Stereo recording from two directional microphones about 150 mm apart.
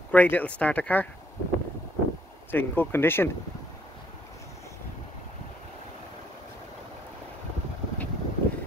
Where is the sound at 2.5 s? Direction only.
15° left (ahead or behind).